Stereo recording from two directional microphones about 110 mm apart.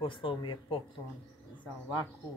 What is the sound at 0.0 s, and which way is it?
Speech, 50° left (ahead or behind).